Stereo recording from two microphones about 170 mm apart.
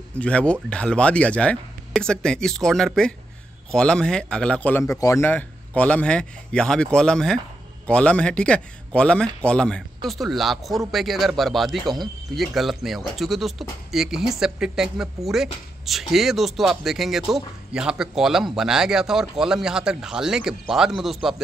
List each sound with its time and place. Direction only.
0.2 s speech: 5° left (ahead or behind)
4.9 s speech: 20° left (ahead or behind); by 21.4 s centre (ahead or behind)